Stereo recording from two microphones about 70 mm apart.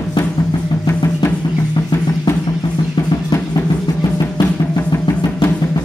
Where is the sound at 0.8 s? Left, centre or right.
Left.